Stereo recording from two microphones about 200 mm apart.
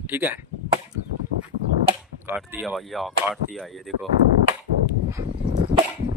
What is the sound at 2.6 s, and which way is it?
Speech, centre (ahead or behind).